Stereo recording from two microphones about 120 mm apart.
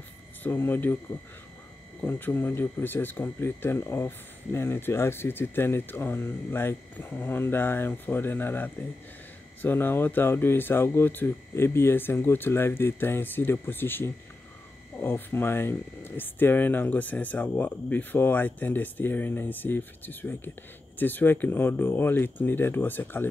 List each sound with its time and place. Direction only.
0.4 s speech: 15° left (ahead or behind)
2.0 s speech: 15° left (ahead or behind)